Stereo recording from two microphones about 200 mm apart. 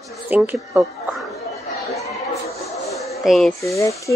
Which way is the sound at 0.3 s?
10° right (ahead or behind).